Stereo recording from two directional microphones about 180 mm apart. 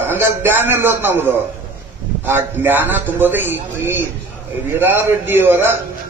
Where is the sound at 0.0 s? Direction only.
10° right (ahead or behind).